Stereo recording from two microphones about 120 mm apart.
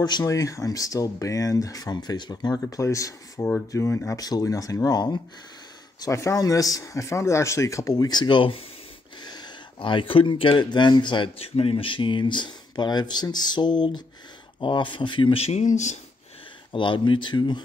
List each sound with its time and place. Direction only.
0.0 s speech: 30° left (ahead or behind)
9.2 s speech: 35° left (ahead or behind)
15.4 s speech: 75° left (ahead or behind)
16.7 s speech: 45° left (ahead or behind)